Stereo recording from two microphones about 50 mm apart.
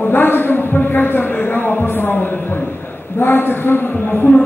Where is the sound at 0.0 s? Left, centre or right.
Left.